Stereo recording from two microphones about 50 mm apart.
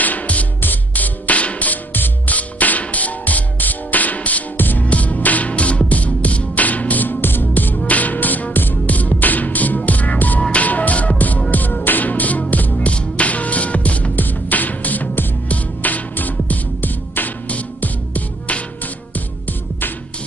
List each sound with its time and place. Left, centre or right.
0.0 s music: left